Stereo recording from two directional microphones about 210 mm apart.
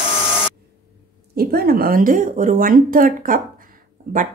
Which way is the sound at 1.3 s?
45° right (ahead or behind).